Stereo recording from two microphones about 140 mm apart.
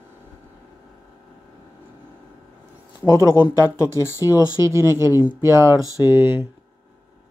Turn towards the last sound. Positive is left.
turn(degrees=-15)  # may be behind; listen again after turning